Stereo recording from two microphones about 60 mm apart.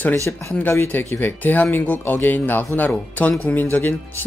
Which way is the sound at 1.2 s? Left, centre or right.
Left.